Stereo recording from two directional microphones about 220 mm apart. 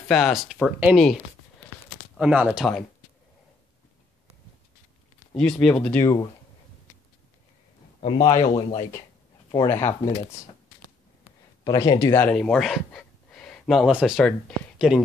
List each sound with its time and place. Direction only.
0.1 s speech: centre (ahead or behind)
5.3 s speech: centre (ahead or behind)
8.0 s speech: 20° left (ahead or behind)
11.6 s speech: 15° left (ahead or behind); by 14.3 s centre (ahead or behind)